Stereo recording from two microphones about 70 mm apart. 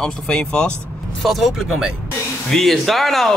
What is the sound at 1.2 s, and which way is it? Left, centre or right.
Speech, centre.